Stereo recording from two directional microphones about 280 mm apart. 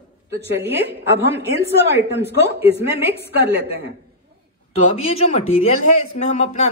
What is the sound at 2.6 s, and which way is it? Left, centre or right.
Speech, right.